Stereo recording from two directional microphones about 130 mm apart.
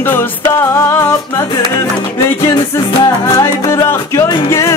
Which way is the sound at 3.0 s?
25° left (ahead or behind).